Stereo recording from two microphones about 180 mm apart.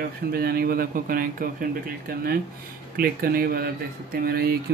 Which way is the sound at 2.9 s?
55° right (ahead or behind).